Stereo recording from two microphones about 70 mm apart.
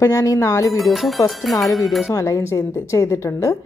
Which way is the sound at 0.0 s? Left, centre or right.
Left.